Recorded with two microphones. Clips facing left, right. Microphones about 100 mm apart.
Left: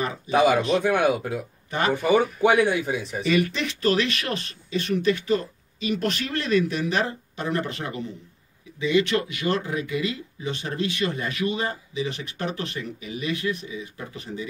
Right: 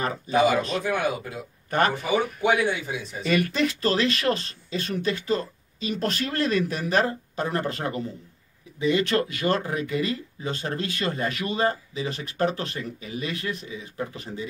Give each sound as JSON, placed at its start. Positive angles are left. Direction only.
{"t": 0.6, "sound": "a man's voice", "side_deg": 20}
{"t": 0.8, "sound": "speech", "side_deg": 65}
{"t": 3.3, "sound": "speech", "side_deg": -45}